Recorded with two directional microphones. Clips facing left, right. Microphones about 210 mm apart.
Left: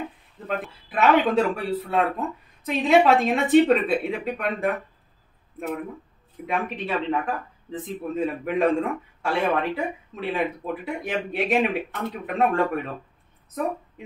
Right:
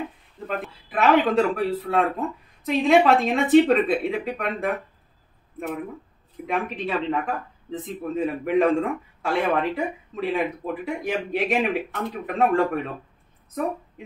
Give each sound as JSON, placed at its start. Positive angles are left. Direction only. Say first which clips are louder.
{"t": 0.5, "sound": "speech", "louder": "left 1 dB", "side_deg": 0}
{"t": 6.4, "sound": "speech", "louder": "right 1 dB", "side_deg": 0}